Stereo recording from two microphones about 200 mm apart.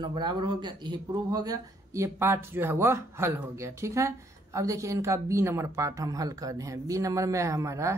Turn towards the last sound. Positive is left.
turn(degrees=-15)  # may be behind; listen again after turning